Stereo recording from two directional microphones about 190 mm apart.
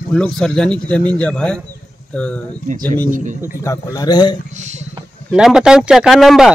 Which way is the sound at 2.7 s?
45° right (ahead or behind).